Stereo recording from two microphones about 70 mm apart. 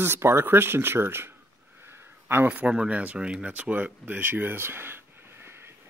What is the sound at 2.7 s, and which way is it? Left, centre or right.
Speech, centre.